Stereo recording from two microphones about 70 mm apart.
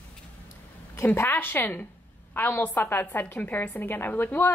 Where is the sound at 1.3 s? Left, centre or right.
Left.